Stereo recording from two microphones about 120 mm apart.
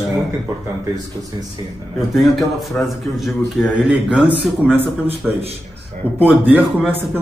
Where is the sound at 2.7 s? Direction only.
Centre (ahead or behind).